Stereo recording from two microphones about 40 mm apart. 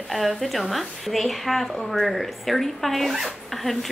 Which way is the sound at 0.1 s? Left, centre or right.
Centre.